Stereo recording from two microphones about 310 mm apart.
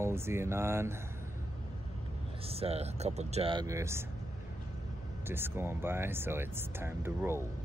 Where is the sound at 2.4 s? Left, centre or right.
Centre.